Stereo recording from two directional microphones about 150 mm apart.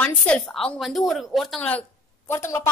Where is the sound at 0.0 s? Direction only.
10° left (ahead or behind).